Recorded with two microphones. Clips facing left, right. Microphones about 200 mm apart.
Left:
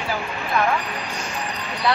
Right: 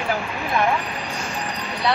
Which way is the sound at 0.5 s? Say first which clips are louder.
Even; 15° right (ahead or behind).